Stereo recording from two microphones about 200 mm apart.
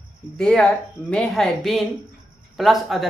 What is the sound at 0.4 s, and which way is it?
Speech, 5° left (ahead or behind).